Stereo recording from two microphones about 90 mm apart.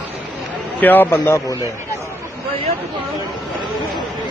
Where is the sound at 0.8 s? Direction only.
20° left (ahead or behind).